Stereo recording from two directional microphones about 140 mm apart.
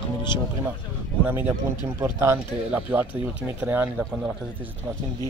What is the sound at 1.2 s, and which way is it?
Speech, 15° right (ahead or behind).